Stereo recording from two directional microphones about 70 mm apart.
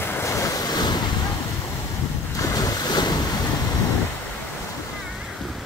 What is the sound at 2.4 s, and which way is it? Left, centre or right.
Waves, left.